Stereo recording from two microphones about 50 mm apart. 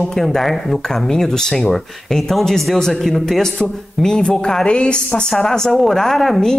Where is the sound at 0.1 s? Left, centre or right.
Centre.